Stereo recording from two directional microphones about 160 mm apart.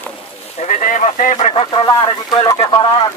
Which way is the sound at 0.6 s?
50° left (ahead or behind).